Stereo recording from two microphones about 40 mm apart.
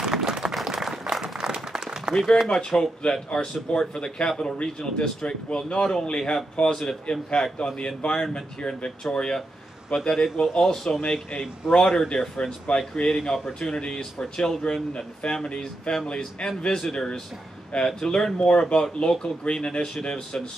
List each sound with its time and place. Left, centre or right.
0.0 s applause: centre
0.7 s a sound: centre
1.3 s applause: centre
2.4 s speech: centre